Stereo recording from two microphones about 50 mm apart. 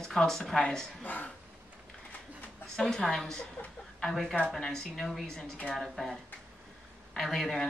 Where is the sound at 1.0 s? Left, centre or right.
Left.